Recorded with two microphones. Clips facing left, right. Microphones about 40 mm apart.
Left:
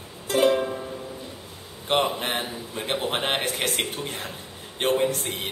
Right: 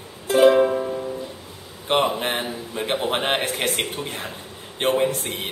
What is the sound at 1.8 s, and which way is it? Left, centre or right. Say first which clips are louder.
A man's voice: right 3 dB; centre.